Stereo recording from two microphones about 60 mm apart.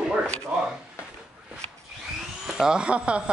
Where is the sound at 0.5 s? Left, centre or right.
Right.